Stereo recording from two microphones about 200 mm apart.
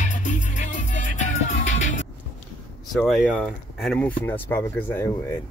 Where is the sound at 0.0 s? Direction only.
40° left (ahead or behind).